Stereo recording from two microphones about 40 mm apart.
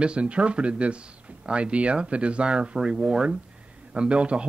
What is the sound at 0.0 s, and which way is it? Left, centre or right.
Speech, right.